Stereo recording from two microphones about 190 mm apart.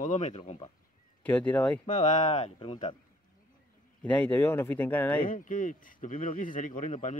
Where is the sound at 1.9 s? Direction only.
40° left (ahead or behind).